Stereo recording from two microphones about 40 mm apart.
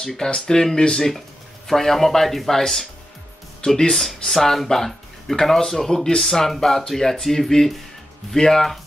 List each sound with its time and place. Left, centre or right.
0.0 s speech: centre
3.9 s speech: centre